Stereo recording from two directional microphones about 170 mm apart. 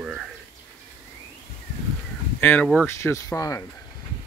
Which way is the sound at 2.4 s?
10° left (ahead or behind).